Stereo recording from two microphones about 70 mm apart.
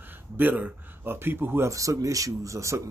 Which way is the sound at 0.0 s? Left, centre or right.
Right.